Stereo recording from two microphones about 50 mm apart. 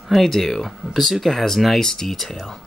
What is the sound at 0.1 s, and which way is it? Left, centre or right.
Speech, centre.